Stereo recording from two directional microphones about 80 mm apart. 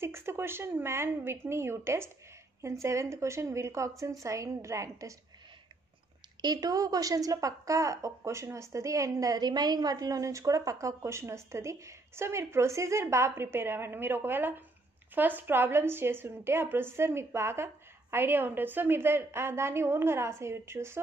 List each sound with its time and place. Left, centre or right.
0.0 s a woman's voice: right
6.4 s a woman's voice: right